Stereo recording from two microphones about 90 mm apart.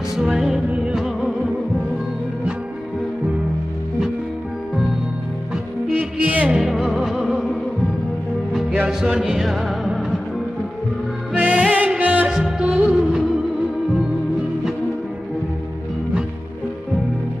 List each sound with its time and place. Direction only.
0.1 s music: 5° right (ahead or behind)
5.5 s music: 15° right (ahead or behind)
6.5 s music: 5° right (ahead or behind)
8.7 s music: 10° right (ahead or behind)
11.3 s music: 15° right (ahead or behind)